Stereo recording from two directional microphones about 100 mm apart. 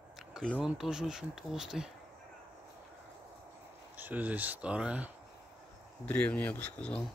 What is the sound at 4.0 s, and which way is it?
Speech, 15° right (ahead or behind).